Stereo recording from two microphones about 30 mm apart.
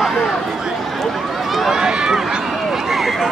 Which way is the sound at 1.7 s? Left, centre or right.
Right.